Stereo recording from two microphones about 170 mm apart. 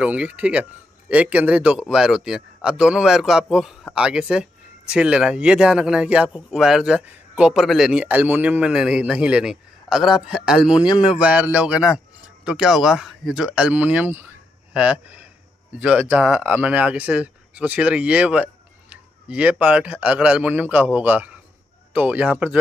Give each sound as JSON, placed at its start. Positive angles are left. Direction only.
{"t": 0.0, "sound": "a man's voice", "side_deg": -5}
{"t": 10.9, "sound": "speech", "side_deg": 25}
{"t": 11.1, "sound": "a man's voice", "side_deg": -10}